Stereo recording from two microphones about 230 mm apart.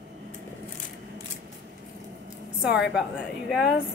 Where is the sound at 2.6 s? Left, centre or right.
Centre.